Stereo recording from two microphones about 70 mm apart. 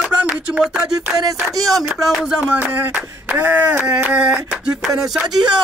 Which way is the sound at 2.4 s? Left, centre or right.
Right.